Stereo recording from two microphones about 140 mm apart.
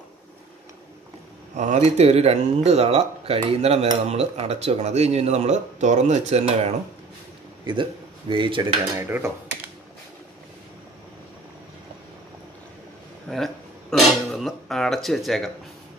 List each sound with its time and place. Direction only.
1.6 s speech: 55° right (ahead or behind)
7.6 s speech: 35° right (ahead or behind)
8.9 s dishes: 20° right (ahead or behind)
13.3 s a sound: centre (ahead or behind)